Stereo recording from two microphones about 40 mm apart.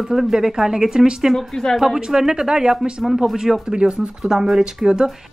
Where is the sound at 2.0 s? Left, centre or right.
Centre.